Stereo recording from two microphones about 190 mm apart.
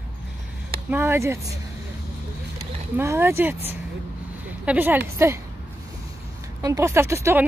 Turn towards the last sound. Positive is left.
turn(degrees=-15)  # may be behind; listen again after turning